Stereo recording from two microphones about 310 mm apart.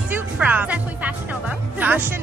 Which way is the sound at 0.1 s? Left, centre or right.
Centre.